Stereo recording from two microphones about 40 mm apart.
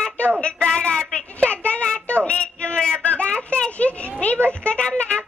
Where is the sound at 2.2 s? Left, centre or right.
Left.